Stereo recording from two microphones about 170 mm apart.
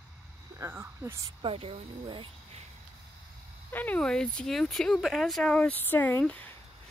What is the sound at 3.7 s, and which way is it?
Speech, 10° left (ahead or behind).